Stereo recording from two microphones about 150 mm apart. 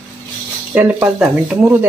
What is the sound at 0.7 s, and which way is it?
Speech, 10° right (ahead or behind).